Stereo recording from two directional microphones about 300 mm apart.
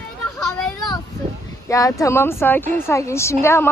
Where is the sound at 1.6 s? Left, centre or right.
Centre.